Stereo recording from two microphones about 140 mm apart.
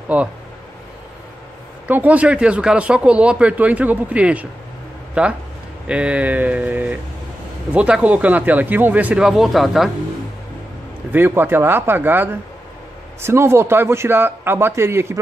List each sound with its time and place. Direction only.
0.1 s speech: 10° right (ahead or behind)
1.9 s speech: 10° right (ahead or behind)
11.1 s speech: 15° right (ahead or behind)